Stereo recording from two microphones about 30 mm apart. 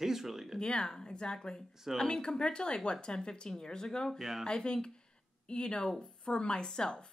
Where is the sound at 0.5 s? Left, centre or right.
Left.